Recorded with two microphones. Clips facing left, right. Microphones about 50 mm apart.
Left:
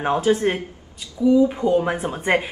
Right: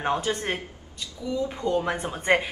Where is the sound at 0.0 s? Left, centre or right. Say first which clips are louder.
Left 7 dB; centre.